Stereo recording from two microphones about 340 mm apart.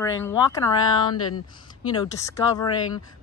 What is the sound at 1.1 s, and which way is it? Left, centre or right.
Speech, left.